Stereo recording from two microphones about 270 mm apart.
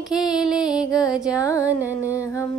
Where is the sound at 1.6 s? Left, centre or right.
Centre.